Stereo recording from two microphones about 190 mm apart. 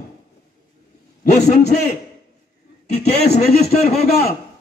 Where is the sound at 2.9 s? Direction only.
55° left (ahead or behind).